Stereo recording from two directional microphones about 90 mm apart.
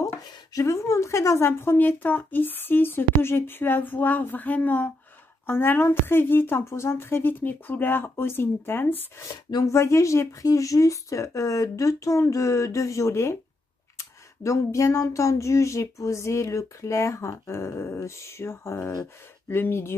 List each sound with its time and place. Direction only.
0.3 s a woman's voice: 40° left (ahead or behind); by 9.0 s 25° left (ahead or behind)
9.5 s a woman's voice: 40° left (ahead or behind)